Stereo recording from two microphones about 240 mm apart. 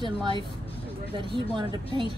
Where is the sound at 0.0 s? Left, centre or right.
Centre.